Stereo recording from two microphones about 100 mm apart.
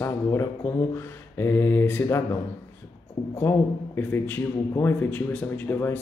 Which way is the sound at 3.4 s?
25° left (ahead or behind).